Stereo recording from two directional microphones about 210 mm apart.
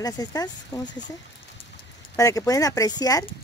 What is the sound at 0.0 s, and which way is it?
Speech, 20° left (ahead or behind).